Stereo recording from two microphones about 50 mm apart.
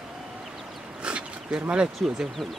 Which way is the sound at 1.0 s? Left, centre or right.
Right.